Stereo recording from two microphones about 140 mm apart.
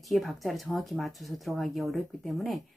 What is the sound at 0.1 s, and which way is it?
Music, centre (ahead or behind).